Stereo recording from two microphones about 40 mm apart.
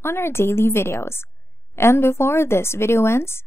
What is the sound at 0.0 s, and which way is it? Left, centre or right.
Speech, left.